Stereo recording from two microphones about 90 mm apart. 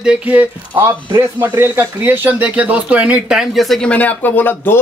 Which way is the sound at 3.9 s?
15° left (ahead or behind).